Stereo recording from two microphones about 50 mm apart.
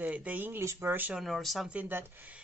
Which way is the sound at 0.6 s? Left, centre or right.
Right.